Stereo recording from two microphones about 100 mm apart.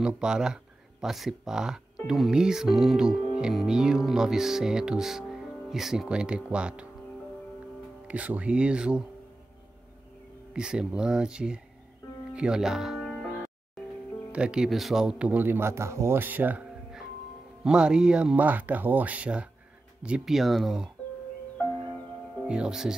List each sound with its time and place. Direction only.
0.0 s speech: 5° right (ahead or behind)
8.1 s speech: 15° right (ahead or behind)
10.5 s speech: 10° right (ahead or behind)
12.3 s music: 10° right (ahead or behind)
14.3 s speech: 10° right (ahead or behind)
17.6 s speech: 10° right (ahead or behind)
22.5 s speech: 5° right (ahead or behind)